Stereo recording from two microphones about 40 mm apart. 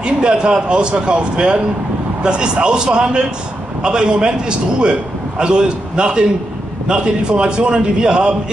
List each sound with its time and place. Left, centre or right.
0.0 s a man's voice: right